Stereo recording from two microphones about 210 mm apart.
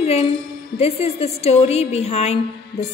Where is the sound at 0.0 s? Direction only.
30° left (ahead or behind).